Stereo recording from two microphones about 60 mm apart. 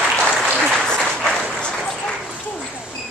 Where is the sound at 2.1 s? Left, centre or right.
Centre.